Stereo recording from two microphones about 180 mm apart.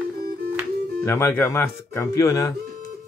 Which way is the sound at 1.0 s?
15° left (ahead or behind).